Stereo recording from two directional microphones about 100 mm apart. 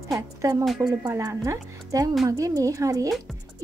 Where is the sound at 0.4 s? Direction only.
35° right (ahead or behind).